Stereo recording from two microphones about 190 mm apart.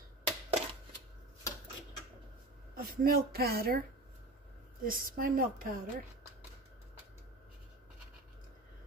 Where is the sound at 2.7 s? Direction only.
50° right (ahead or behind).